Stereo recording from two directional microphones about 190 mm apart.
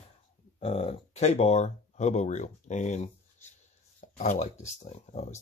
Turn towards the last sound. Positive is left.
turn(degrees=35)  # may be behind; listen again after turning